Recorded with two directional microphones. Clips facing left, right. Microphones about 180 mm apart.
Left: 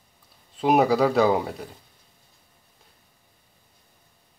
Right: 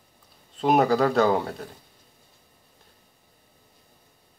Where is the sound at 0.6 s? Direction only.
5° left (ahead or behind).